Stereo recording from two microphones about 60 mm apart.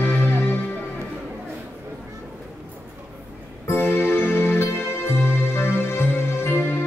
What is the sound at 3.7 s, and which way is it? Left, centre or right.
Music, left.